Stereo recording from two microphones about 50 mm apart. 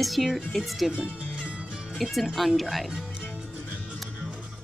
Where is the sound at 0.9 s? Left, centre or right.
Right.